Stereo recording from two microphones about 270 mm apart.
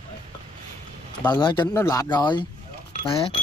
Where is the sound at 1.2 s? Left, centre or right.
Centre.